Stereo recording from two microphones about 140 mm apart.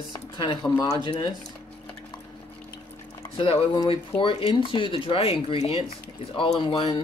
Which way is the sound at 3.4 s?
40° left (ahead or behind).